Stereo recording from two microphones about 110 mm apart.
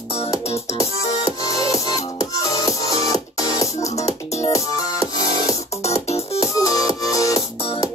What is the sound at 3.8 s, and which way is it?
Music, 80° left.